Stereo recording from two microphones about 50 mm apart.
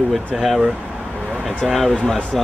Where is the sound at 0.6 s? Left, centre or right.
Right.